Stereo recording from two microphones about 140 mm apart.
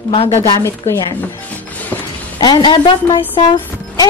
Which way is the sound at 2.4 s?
35° left (ahead or behind).